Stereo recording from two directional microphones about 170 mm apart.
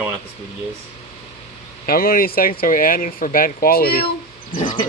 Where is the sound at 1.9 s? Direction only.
60° left (ahead or behind).